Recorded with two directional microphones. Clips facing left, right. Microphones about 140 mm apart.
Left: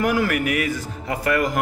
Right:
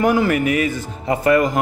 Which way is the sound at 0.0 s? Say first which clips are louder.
Right 4 dB; 25° right (ahead or behind).